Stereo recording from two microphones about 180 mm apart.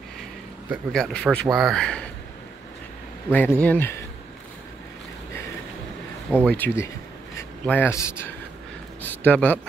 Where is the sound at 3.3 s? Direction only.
10° left (ahead or behind).